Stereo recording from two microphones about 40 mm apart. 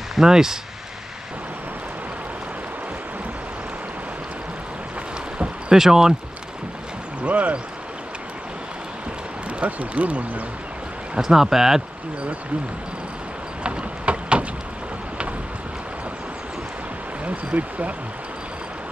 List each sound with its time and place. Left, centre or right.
0.1 s speech: centre
5.7 s speech: centre
7.2 s speech: right
9.6 s speech: right
11.1 s speech: centre
13.7 s a sound: right
17.2 s speech: right